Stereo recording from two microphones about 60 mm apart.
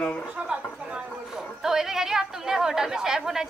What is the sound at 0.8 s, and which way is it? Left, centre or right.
Speech, right.